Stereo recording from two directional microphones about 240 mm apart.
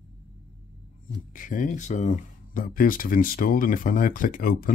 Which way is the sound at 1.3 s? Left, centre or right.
Left.